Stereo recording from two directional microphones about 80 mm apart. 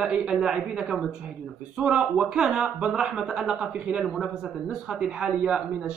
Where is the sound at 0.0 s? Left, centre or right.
Centre.